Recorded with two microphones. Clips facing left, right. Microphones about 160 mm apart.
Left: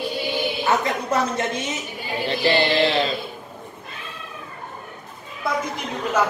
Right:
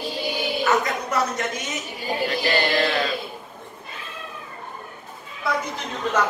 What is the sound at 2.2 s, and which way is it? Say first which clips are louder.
Mantra: left 4 dB; 25° left (ahead or behind).